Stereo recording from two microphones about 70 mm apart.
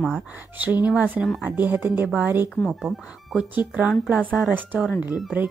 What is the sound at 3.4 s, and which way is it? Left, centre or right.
A woman's voice, centre.